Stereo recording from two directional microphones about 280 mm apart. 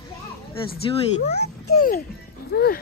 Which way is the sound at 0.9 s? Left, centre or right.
Left.